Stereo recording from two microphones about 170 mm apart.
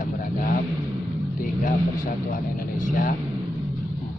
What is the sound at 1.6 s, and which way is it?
A man's voice, 50° left (ahead or behind).